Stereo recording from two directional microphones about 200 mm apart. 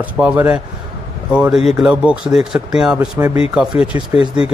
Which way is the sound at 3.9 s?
20° right (ahead or behind).